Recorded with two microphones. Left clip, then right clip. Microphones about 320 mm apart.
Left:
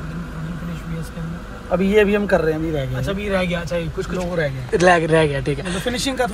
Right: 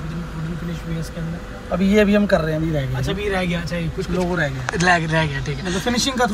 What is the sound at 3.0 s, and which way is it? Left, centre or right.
Speech, centre.